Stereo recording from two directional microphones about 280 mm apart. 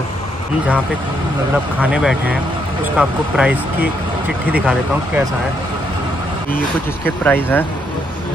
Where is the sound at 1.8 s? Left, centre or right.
Centre.